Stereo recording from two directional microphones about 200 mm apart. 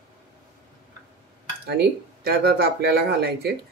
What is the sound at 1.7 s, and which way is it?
Speech, 55° right (ahead or behind).